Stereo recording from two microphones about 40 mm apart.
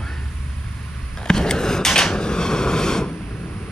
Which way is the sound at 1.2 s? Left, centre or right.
Centre.